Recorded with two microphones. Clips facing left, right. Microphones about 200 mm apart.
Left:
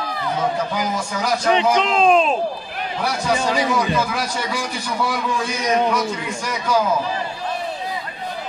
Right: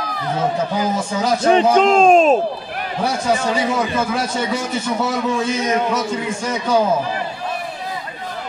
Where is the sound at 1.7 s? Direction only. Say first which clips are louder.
Right 5 dB; 45° right (ahead or behind).